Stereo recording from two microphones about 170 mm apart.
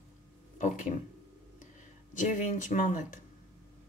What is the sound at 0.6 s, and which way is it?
Speech, 50° left (ahead or behind).